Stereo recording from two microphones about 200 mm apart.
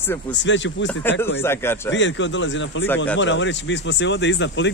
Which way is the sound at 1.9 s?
65° left (ahead or behind).